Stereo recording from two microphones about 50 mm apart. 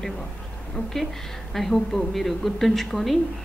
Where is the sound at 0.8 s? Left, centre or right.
Left.